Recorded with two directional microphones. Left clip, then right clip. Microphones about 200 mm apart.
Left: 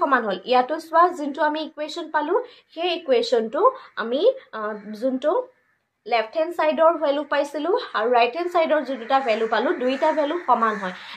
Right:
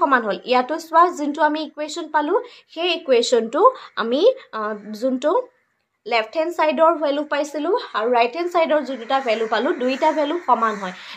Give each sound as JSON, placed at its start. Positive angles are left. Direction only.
{"t": 0.0, "sound": "a woman's voice", "side_deg": -30}